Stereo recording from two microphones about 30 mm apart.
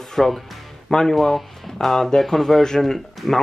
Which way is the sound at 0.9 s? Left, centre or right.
Left.